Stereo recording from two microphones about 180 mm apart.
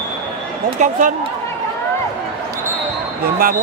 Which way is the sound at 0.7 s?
45° right (ahead or behind).